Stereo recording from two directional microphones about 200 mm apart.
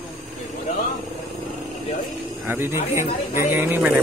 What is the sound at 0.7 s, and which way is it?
Vehicle, 35° left (ahead or behind).